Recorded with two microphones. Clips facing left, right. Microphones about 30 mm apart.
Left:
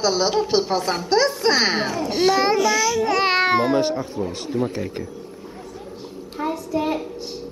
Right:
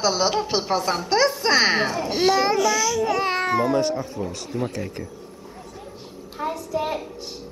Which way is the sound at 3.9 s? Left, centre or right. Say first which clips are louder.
Left 2 dB; centre.